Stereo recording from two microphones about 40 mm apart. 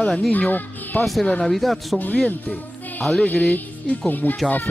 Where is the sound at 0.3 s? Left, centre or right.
Left.